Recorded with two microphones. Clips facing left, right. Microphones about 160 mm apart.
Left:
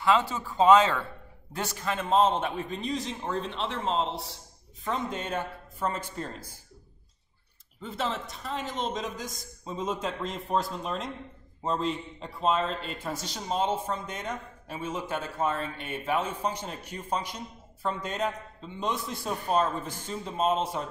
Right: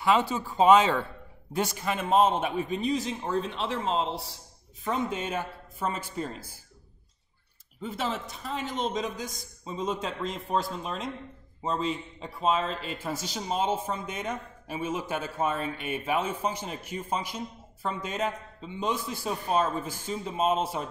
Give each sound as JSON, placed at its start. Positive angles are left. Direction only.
{"t": 0.0, "sound": "a man's voice", "side_deg": -15}
{"t": 7.8, "sound": "a man's voice", "side_deg": -5}